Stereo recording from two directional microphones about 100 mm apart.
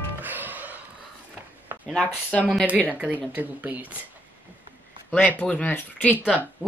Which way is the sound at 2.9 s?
15° right (ahead or behind).